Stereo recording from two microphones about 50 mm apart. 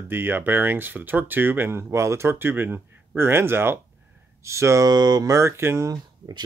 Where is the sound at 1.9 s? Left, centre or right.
Right.